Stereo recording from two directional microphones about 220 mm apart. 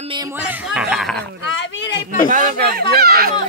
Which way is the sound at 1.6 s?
55° left (ahead or behind).